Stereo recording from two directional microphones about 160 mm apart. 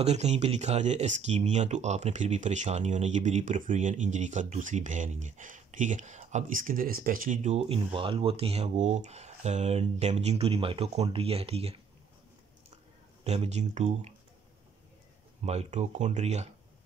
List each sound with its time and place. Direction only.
0.0 s speech: 45° right (ahead or behind)
13.2 s speech: 40° right (ahead or behind)
15.4 s speech: 45° right (ahead or behind)